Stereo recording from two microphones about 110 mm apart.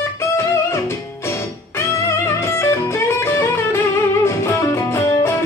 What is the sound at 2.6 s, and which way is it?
Music, 25° left (ahead or behind).